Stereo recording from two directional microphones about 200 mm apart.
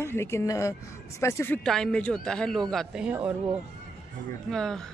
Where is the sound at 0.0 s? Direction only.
15° left (ahead or behind); by 3.3 s 5° right (ahead or behind).